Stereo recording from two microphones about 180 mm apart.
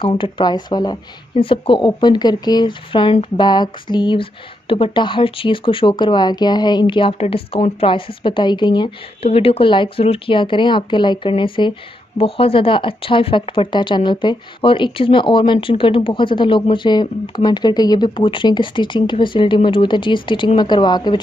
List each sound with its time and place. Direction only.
0.0 s speech: 30° left (ahead or behind)